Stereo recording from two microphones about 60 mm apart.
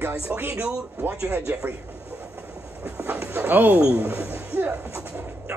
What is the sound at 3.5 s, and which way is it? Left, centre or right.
Speech, right.